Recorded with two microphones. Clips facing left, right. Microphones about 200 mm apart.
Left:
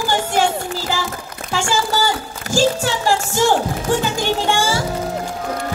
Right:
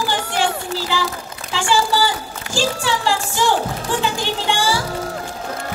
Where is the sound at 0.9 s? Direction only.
45° left (ahead or behind).